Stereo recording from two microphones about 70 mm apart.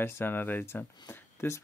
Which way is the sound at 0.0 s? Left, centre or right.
Left.